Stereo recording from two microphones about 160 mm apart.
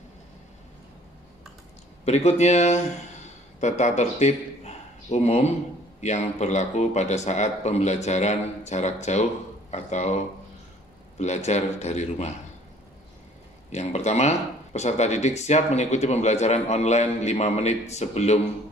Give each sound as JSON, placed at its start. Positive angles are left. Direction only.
{"t": 2.0, "sound": "speech", "side_deg": 45}
{"t": 13.7, "sound": "speech", "side_deg": 45}